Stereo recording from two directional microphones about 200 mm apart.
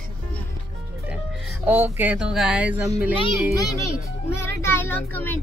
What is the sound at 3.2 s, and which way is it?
Speech, 15° left (ahead or behind).